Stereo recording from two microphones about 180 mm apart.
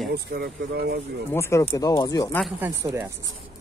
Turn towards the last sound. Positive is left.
turn(degrees=-10)  # may be behind; listen again after turning